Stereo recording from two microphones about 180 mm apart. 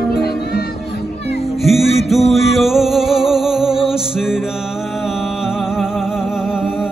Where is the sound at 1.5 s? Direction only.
Centre (ahead or behind).